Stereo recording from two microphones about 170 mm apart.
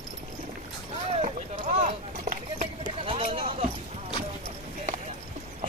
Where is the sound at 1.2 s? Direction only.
40° right (ahead or behind).